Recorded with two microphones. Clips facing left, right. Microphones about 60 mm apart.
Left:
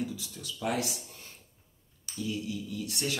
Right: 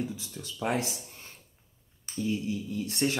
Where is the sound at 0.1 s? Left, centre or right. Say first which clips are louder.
Right 1 dB; right.